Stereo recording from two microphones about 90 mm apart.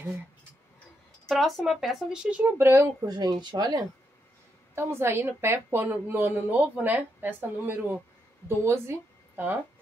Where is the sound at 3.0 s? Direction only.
50° right (ahead or behind).